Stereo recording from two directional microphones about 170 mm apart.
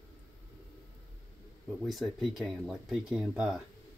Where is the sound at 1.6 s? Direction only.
Centre (ahead or behind).